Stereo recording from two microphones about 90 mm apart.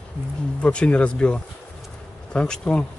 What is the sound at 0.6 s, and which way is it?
Speech, 10° left (ahead or behind).